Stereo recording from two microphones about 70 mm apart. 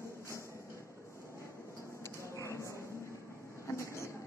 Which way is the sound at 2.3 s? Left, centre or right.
Left.